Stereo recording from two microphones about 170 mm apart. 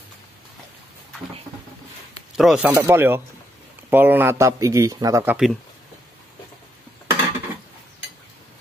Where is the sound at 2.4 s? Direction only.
5° right (ahead or behind).